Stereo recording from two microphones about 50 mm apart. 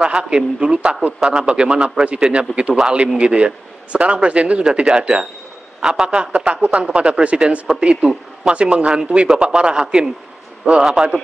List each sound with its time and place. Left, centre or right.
0.0 s a man's voice: centre